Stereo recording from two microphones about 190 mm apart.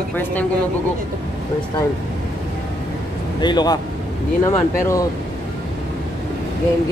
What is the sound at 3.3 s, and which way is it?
Speech, 20° left (ahead or behind).